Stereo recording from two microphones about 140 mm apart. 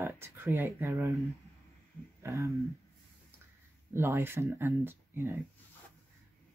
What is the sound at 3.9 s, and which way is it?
Speech, 15° right (ahead or behind).